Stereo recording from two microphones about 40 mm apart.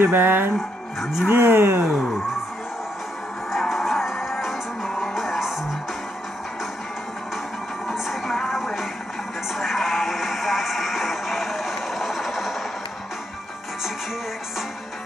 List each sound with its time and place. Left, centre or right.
0.0 s speech: right
1.3 s speech: right
3.5 s music: centre
7.9 s music: centre